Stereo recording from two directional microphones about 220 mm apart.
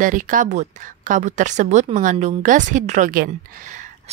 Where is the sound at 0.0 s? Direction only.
35° right (ahead or behind).